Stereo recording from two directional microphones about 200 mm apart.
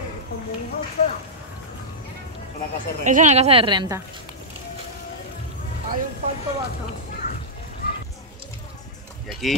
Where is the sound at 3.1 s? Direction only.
40° right (ahead or behind); by 4.0 s 20° right (ahead or behind).